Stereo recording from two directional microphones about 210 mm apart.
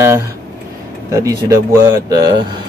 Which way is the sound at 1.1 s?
15° right (ahead or behind).